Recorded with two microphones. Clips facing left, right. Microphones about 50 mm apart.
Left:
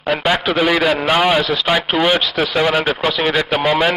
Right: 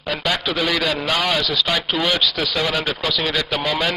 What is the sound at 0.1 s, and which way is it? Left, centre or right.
A man's voice, left.